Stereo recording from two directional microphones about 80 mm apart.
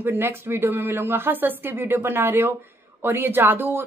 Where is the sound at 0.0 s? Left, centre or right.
Right.